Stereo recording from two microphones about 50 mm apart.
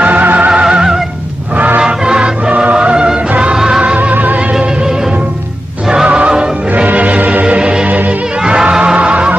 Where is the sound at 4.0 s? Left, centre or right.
Right.